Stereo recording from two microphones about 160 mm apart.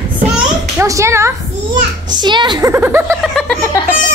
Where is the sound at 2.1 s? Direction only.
30° right (ahead or behind).